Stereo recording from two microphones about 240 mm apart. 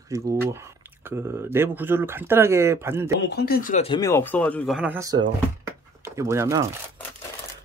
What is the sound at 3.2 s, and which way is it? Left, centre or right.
Speech, left.